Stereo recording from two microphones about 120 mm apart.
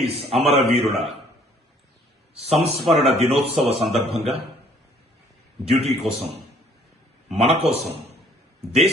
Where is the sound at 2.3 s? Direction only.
60° right (ahead or behind).